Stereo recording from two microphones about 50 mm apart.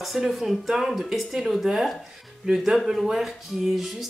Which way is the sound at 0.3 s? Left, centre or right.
Centre.